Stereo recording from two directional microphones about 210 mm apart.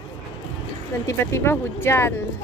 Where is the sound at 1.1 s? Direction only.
10° left (ahead or behind).